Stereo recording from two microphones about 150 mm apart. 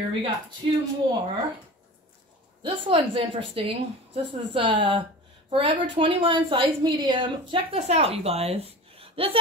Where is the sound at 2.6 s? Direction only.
35° right (ahead or behind).